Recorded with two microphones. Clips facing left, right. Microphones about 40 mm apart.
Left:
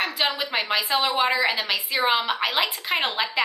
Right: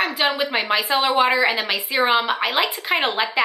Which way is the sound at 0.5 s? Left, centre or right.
Centre.